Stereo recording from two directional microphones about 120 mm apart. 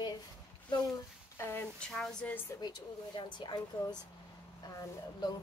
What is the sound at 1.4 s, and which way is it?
Speech, 20° left (ahead or behind).